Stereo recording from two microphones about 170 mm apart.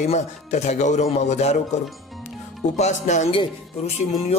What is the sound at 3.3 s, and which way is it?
Speech, 30° left (ahead or behind).